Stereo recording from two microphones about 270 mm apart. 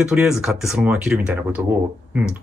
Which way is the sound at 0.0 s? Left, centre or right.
Centre.